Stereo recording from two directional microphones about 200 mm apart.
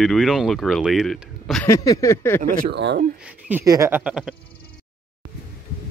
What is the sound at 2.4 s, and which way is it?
Speech, 50° right (ahead or behind).